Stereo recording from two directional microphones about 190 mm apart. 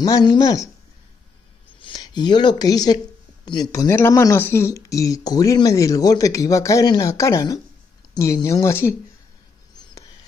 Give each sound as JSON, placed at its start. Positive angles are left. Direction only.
{"t": 0.0, "sound": "speech", "side_deg": 20}
{"t": 1.8, "sound": "speech", "side_deg": 25}